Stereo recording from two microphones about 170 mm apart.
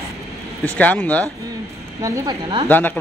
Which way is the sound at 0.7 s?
10° left (ahead or behind).